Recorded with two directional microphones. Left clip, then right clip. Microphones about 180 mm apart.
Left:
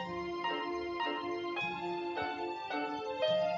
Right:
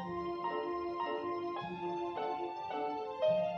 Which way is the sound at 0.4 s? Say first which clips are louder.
Left 2 dB; 15° left (ahead or behind).